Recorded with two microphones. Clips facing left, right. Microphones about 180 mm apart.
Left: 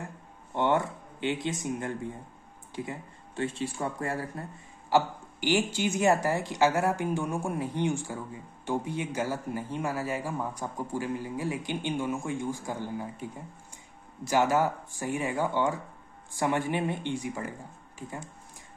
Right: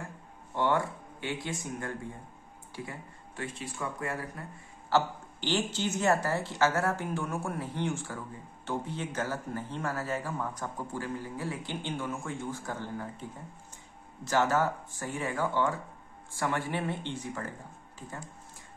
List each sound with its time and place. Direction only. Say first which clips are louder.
0.6 s speech: left 2 dB; 20° left (ahead or behind)
4.8 s speech: left 2 dB; 10° left (ahead or behind)